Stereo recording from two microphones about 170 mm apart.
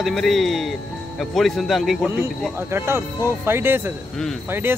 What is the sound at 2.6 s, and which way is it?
Speech, 15° right (ahead or behind).